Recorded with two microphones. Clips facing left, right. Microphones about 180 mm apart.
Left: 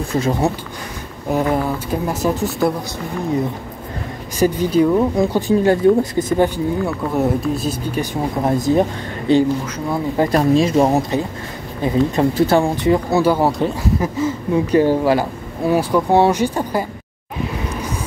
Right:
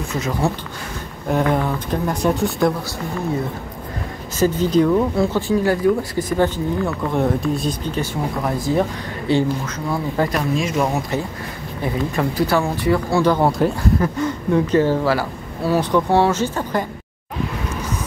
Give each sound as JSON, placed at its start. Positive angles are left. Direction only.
{"t": 0.1, "sound": "speech", "side_deg": 25}
{"t": 1.3, "sound": "speech", "side_deg": 5}
{"t": 4.4, "sound": "speech", "side_deg": 10}
{"t": 7.1, "sound": "speech", "side_deg": 5}
{"t": 10.3, "sound": "speech", "side_deg": 30}
{"t": 13.2, "sound": "speech", "side_deg": 5}